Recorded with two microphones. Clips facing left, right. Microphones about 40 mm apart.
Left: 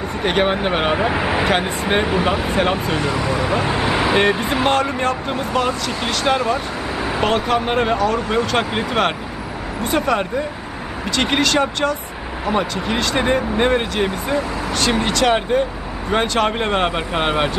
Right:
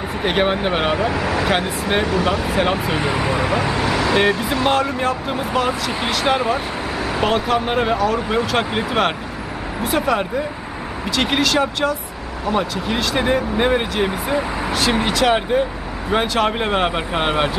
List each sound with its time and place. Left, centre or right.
0.2 s speech: centre
0.9 s speech: left
1.6 s speech: centre
2.5 s speech: centre
3.2 s speech: right
3.6 s speech: left
4.2 s speech: centre
4.6 s speech: centre
7.2 s speech: centre